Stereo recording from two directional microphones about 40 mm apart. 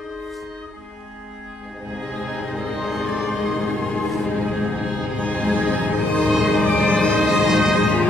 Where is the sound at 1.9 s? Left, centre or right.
Centre.